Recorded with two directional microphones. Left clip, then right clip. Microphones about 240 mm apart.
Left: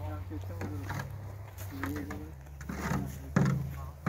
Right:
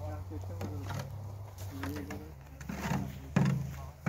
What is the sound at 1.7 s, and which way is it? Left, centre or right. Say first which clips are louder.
Speech: left 3 dB; right.